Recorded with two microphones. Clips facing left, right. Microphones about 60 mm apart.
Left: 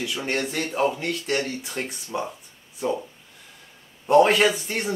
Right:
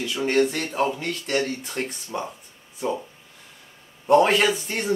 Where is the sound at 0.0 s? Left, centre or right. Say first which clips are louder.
Right 5 dB; centre.